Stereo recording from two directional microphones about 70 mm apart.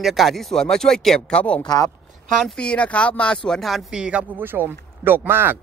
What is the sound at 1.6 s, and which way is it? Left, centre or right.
Speech, left.